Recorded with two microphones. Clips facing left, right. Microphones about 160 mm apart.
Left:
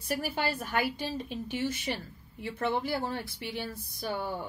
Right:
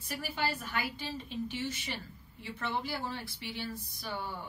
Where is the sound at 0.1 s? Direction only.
50° left (ahead or behind).